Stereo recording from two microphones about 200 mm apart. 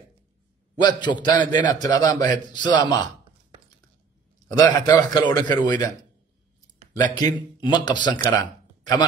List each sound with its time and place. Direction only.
0.7 s a man's voice: 20° left (ahead or behind)
4.5 s a man's voice: 20° left (ahead or behind)